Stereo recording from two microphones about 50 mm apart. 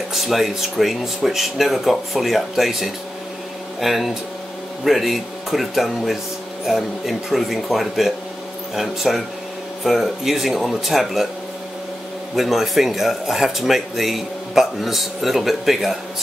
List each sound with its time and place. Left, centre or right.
0.1 s speech: centre
12.4 s speech: centre